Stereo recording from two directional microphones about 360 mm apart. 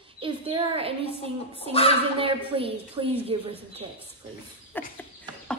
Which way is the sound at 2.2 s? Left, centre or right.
Centre.